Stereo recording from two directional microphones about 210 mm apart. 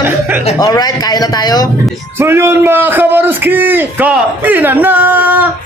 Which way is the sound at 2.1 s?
10° right (ahead or behind).